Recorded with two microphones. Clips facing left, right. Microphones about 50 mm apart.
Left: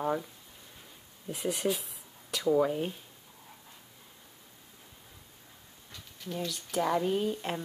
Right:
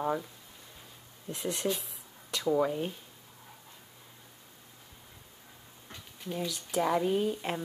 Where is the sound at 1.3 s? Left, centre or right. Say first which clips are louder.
Left 1 dB; centre.